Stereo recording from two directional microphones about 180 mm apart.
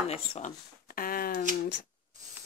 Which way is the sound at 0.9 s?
50° left (ahead or behind).